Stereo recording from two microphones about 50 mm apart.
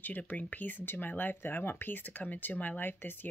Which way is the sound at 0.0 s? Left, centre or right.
Left.